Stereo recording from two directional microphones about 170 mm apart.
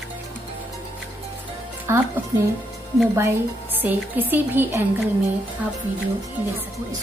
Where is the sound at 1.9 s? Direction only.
15° right (ahead or behind).